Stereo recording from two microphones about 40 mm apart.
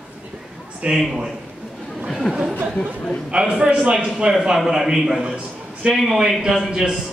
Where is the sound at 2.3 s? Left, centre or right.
Centre.